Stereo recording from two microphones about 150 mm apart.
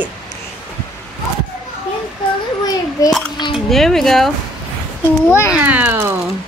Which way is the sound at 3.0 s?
25° left (ahead or behind).